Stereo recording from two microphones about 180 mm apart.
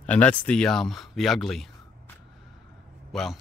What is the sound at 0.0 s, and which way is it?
Speech, 10° left (ahead or behind).